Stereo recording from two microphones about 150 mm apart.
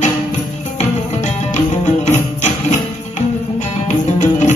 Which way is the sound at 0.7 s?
50° left (ahead or behind).